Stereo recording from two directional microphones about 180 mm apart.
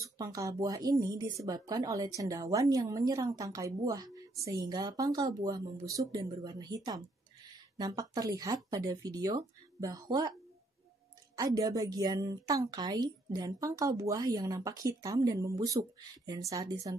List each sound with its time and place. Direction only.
0.2 s a woman's voice: 20° right (ahead or behind)
11.3 s a woman's voice: 20° right (ahead or behind)